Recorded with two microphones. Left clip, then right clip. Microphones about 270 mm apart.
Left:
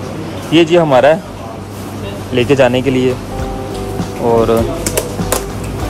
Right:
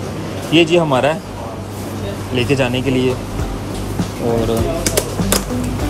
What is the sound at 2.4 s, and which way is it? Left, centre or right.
Speech, left.